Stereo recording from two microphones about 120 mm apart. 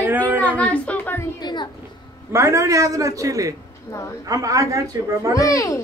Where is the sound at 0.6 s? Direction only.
10° left (ahead or behind).